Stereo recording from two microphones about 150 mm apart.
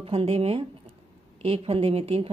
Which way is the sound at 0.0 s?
40° right (ahead or behind).